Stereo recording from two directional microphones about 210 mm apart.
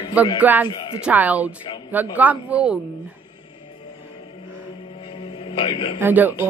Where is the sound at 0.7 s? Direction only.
25° left (ahead or behind).